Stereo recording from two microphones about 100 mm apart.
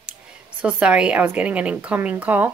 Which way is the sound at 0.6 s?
15° right (ahead or behind).